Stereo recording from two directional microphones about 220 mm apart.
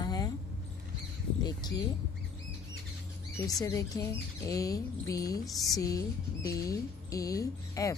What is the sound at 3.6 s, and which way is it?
A woman's voice, 15° left (ahead or behind).